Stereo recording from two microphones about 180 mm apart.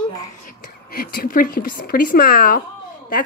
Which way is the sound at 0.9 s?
55° left (ahead or behind).